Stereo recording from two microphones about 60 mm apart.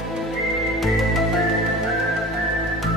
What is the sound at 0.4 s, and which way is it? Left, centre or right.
Music, centre.